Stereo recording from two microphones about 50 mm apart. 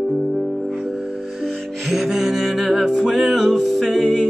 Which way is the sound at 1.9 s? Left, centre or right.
Centre.